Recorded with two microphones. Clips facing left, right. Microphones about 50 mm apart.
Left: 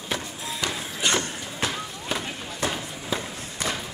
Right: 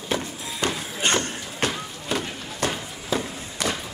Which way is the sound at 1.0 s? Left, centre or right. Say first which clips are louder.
Right 2 dB; right.